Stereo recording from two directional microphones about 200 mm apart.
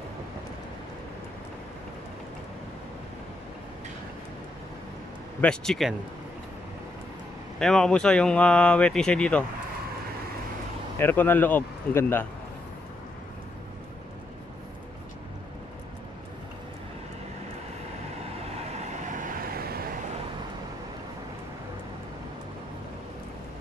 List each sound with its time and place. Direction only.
5.4 s speech: 5° left (ahead or behind)
7.5 s speech: 5° left (ahead or behind)
11.0 s speech: 10° left (ahead or behind)
18.7 s vehicle: 35° right (ahead or behind)